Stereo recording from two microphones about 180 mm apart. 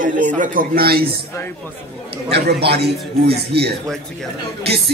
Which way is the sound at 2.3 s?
65° right (ahead or behind).